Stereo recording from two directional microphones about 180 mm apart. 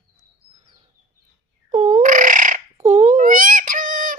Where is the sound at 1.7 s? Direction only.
45° right (ahead or behind).